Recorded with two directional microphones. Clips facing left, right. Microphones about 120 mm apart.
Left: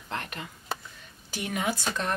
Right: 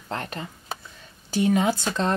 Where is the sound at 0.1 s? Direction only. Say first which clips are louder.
Right 4 dB; 35° right (ahead or behind).